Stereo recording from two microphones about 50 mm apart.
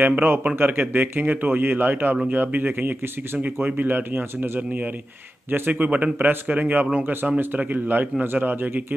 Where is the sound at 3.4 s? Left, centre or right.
Right.